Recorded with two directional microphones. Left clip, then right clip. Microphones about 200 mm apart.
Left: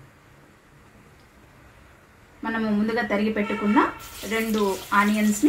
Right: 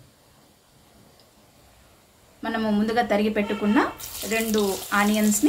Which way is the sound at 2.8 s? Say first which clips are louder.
Right 4 dB; 15° right (ahead or behind).